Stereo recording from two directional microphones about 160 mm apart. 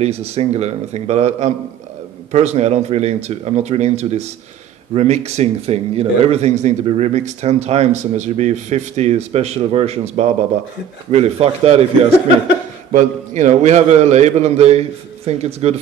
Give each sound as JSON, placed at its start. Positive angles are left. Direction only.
{"t": 0.0, "sound": "speech", "side_deg": -40}
{"t": 12.9, "sound": "speech", "side_deg": -50}